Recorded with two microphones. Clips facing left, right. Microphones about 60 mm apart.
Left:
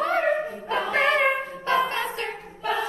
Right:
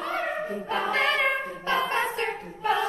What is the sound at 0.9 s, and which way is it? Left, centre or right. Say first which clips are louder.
Choir: left 3 dB; left.